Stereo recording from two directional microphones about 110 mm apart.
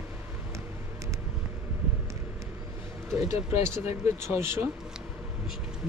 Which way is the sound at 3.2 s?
30° right (ahead or behind).